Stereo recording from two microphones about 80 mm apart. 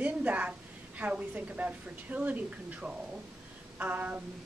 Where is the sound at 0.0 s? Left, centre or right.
Centre.